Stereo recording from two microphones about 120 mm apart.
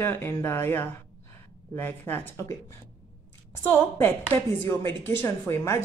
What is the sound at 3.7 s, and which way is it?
Speech, 20° left (ahead or behind).